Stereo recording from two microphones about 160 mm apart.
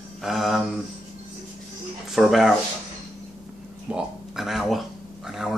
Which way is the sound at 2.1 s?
Centre (ahead or behind).